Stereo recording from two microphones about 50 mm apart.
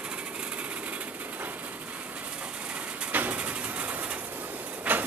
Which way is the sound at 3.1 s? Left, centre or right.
Right.